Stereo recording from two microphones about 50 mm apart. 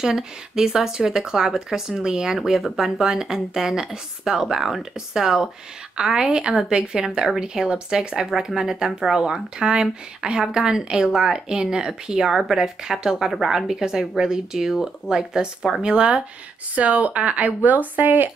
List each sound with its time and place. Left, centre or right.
0.0 s speech: centre
8.2 s speech: centre
16.7 s a woman's voice: right